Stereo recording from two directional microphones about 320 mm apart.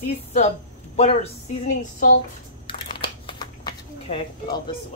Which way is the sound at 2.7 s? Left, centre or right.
Centre.